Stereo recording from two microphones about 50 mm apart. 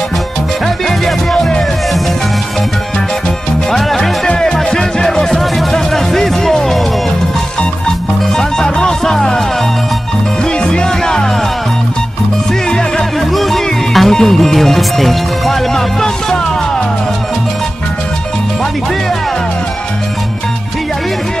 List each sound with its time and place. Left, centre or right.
0.8 s music: centre
3.7 s music: centre
8.4 s music: centre
10.6 s music: centre
12.6 s music: centre
13.3 s music: centre